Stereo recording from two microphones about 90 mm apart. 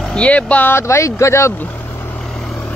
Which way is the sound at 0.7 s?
30° left (ahead or behind).